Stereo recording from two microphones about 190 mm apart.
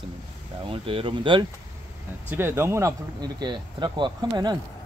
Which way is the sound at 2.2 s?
10° right (ahead or behind).